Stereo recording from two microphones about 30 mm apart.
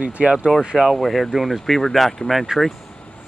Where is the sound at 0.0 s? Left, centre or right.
Right.